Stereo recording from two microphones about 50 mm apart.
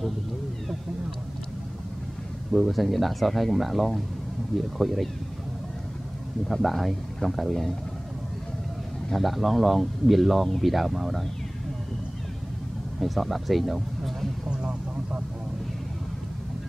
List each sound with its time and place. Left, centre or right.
2.5 s speech: centre
6.4 s speech: centre
9.1 s speech: centre
13.0 s speech: centre
14.5 s vehicle: right